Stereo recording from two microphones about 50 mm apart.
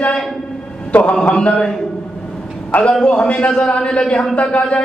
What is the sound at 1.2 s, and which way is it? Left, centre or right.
Speech, left.